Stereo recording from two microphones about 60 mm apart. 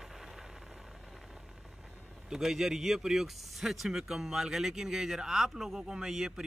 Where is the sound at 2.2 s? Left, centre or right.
Centre.